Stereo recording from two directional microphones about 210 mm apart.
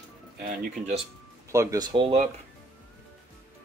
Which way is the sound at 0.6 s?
30° right (ahead or behind).